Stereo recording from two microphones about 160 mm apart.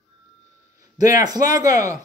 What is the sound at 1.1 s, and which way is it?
Speech, 25° right (ahead or behind).